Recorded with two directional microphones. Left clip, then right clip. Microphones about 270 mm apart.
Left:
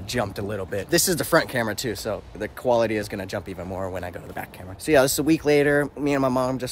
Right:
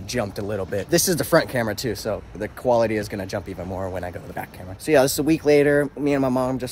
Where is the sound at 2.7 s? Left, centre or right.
Centre.